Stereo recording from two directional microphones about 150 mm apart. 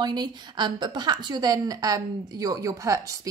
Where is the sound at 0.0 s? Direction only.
30° right (ahead or behind).